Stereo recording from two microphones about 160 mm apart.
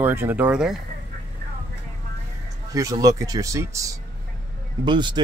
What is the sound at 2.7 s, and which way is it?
Speech, 20° right (ahead or behind).